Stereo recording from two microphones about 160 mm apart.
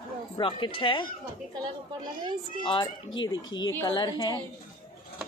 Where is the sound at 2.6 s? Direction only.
30° left (ahead or behind).